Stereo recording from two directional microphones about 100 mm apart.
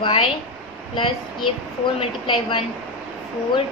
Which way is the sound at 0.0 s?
55° left (ahead or behind).